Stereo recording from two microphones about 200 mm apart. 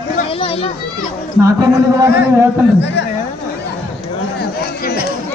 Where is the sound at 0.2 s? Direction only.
30° left (ahead or behind).